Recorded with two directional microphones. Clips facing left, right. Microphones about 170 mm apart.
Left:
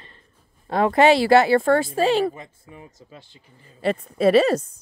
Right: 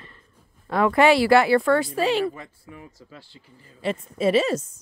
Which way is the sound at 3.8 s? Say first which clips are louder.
Left 4 dB; 60° left (ahead or behind).